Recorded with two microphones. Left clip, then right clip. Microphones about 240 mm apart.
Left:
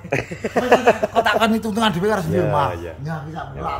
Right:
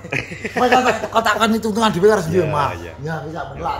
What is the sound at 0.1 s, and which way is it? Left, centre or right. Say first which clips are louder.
Speech: left 2 dB; left.